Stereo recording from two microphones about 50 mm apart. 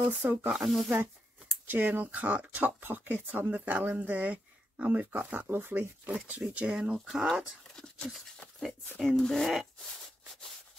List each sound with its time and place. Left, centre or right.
0.1 s speech: right
0.5 s speech: centre
1.7 s speech: right
5.5 s speech: right
6.7 s speech: centre
7.7 s a sound: centre
8.3 s speech: centre